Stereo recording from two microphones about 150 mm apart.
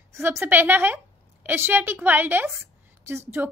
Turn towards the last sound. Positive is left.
turn(degrees=-15)  # may be behind; listen again after turning